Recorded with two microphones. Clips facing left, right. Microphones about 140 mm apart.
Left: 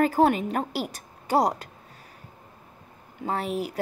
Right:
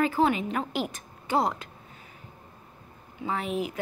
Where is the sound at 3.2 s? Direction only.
40° left (ahead or behind).